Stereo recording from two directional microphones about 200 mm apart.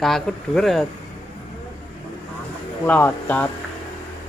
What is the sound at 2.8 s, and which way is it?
Speech, 10° left (ahead or behind).